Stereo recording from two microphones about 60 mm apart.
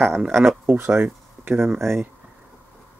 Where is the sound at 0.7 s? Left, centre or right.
Right.